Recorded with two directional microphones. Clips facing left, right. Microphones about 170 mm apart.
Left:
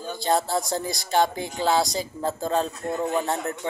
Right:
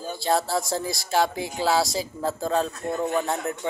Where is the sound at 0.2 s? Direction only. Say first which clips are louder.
Even; centre (ahead or behind).